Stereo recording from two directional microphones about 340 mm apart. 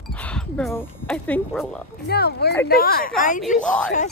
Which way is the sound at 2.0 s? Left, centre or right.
Left.